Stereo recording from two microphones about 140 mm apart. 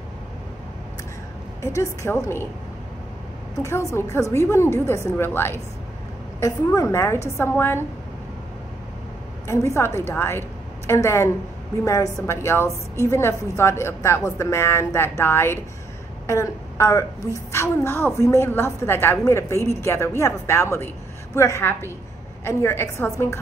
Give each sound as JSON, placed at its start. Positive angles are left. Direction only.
{"t": 1.6, "sound": "a woman's voice", "side_deg": 20}
{"t": 3.5, "sound": "a woman's voice", "side_deg": 20}
{"t": 9.8, "sound": "a woman's voice", "side_deg": 20}